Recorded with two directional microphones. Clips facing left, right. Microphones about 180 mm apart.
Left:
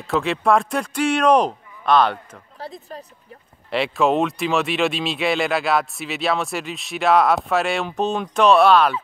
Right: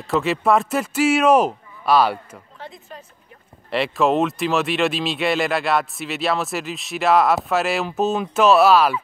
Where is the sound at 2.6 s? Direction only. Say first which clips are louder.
Left 5 dB; 35° left (ahead or behind).